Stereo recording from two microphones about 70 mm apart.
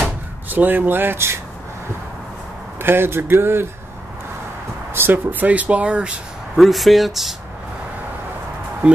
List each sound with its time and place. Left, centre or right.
0.0 s speech: right
2.8 s speech: right
4.9 s speech: right
6.5 s speech: centre
8.8 s speech: centre